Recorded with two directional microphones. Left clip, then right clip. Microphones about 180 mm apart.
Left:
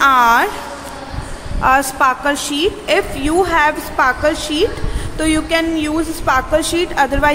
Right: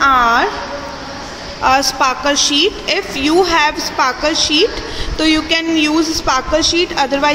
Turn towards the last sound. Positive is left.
turn(degrees=-5)  # may be behind; listen again after turning